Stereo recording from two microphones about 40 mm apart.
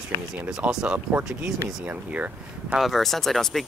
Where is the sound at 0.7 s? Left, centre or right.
Centre.